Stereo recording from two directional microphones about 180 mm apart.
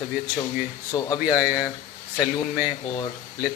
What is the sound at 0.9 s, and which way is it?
Speech, 25° left (ahead or behind).